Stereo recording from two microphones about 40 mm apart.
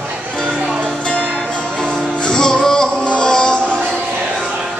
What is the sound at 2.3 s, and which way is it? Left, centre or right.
Music, centre.